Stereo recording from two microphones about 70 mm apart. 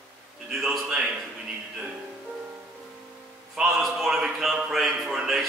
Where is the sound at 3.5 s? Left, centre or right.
Centre.